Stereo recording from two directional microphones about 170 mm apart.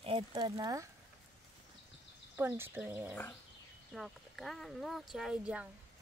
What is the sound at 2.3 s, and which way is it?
Speech, 10° right (ahead or behind).